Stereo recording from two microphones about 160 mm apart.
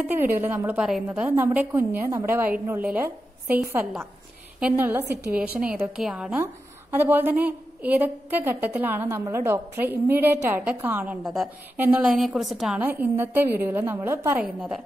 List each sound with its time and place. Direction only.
0.0 s a woman's voice: 15° right (ahead or behind)
4.6 s a woman's voice: 10° right (ahead or behind)
5.0 s a woman's voice: 90° right
5.6 s a woman's voice: 5° right (ahead or behind)
11.2 s a woman's voice: centre (ahead or behind)
12.2 s a woman's voice: centre (ahead or behind)
12.8 s a woman's voice: 15° right (ahead or behind)